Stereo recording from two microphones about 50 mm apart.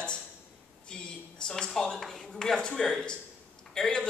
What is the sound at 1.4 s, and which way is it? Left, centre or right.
A man's voice, centre.